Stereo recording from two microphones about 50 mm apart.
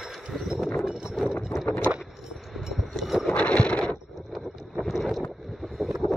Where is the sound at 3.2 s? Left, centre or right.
Left.